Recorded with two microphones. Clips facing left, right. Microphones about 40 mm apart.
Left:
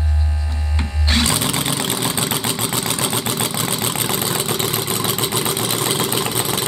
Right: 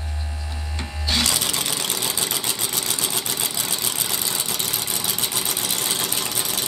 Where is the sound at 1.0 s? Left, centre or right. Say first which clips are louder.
Left 4 dB; left.